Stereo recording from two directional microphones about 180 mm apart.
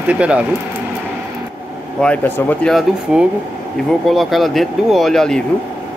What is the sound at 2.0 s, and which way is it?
Speech, 10° left (ahead or behind).